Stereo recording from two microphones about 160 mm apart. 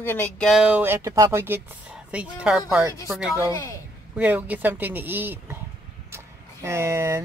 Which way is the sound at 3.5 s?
20° left (ahead or behind).